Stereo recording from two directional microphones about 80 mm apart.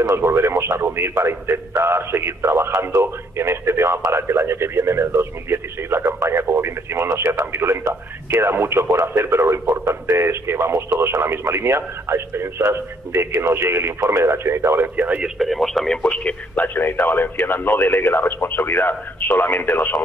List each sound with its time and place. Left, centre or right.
0.0 s a man's voice: right
15.2 s speech: centre
16.0 s speech: centre